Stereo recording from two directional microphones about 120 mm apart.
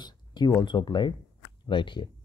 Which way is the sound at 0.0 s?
35° left (ahead or behind).